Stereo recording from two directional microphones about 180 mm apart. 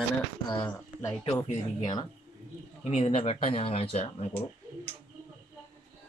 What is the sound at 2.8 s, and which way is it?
Speech, 35° left (ahead or behind).